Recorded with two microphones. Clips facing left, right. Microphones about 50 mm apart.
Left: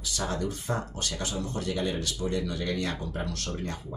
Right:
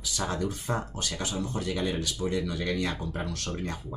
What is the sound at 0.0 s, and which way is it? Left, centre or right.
Speech, centre.